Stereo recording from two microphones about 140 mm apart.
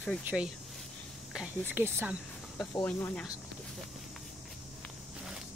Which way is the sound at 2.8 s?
10° left (ahead or behind).